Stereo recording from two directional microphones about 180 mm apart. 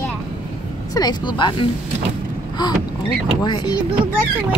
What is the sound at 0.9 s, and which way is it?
Speech, 25° left (ahead or behind).